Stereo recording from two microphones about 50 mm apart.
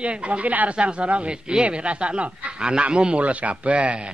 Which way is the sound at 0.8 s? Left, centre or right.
Right.